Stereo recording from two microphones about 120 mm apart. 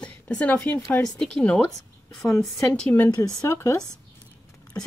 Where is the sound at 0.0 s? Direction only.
10° left (ahead or behind).